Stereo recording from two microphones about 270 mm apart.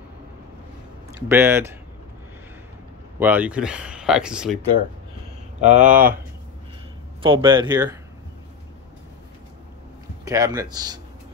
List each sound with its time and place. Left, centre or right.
1.3 s speech: centre
3.2 s speech: centre
5.6 s speech: right
7.2 s speech: centre
10.2 s speech: centre